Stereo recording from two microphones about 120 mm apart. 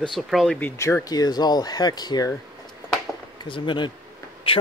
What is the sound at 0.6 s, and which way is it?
Speech, 20° left (ahead or behind).